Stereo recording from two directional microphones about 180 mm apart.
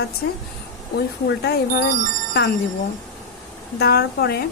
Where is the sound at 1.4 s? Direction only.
65° left (ahead or behind).